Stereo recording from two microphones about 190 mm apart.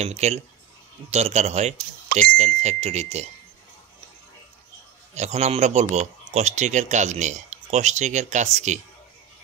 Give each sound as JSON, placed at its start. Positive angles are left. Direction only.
{"t": 0.0, "sound": "speech", "side_deg": -35}
{"t": 5.1, "sound": "speech", "side_deg": -35}